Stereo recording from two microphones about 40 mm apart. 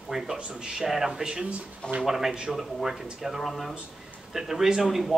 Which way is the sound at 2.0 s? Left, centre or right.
Centre.